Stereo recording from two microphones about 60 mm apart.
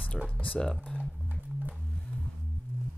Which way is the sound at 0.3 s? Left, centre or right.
Left.